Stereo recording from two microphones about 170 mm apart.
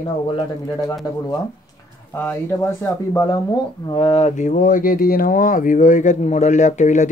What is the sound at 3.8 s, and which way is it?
Speech, 30° left (ahead or behind).